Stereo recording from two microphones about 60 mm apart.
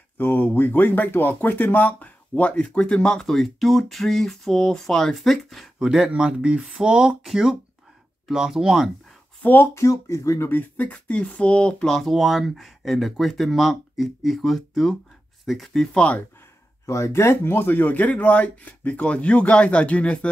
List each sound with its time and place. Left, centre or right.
0.2 s speech: left; by 5.9 s centre
5.9 s speech: centre
9.4 s speech: left
9.8 s speech: left
10.9 s speech: centre
16.8 s speech: left; by 20.2 s centre